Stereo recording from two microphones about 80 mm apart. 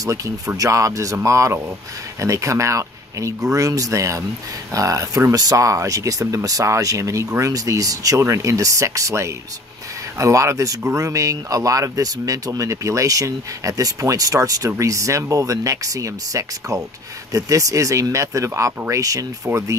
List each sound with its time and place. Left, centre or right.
0.0 s speech: right